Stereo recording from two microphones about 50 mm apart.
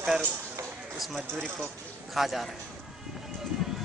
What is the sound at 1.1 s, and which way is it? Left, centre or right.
Speech, centre.